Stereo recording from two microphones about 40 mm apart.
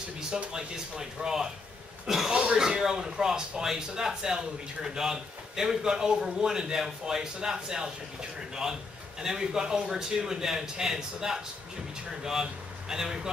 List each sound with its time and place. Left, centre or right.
0.3 s speech: centre
2.3 s speech: right
2.6 s speech: centre